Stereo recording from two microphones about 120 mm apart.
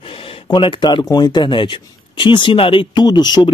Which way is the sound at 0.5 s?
40° left (ahead or behind).